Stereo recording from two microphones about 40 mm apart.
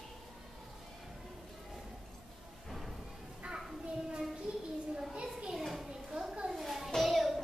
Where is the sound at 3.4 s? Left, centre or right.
Right.